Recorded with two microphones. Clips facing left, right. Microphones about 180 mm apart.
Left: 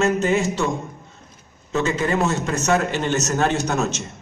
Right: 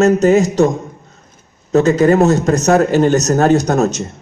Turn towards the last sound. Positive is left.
turn(degrees=-40)  # may be behind; listen again after turning